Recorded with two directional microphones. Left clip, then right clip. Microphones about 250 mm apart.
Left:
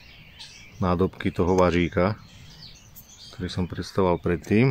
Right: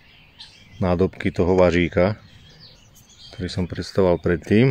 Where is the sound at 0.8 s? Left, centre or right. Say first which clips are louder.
Right 3 dB; centre.